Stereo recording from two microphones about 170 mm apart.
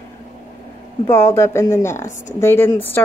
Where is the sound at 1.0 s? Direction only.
15° left (ahead or behind).